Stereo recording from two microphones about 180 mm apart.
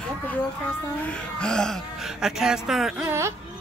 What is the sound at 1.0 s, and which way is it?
Speech, 5° left (ahead or behind).